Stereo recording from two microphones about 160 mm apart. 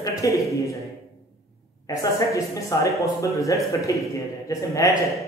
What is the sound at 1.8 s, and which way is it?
Speech, 20° left (ahead or behind).